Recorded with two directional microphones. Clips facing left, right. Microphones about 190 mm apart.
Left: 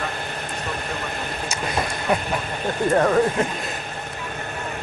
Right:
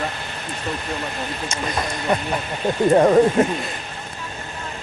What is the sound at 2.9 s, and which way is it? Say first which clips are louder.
Speech: right 5 dB; 20° right (ahead or behind).